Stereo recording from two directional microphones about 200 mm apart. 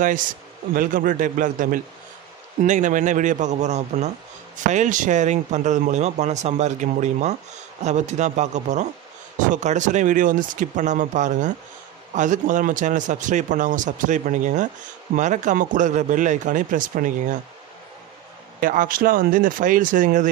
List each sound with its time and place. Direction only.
0.0 s speech: 40° right (ahead or behind)
18.6 s speech: 45° right (ahead or behind)